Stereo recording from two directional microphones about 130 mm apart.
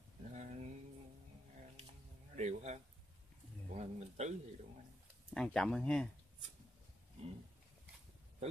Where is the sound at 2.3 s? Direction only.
60° right (ahead or behind).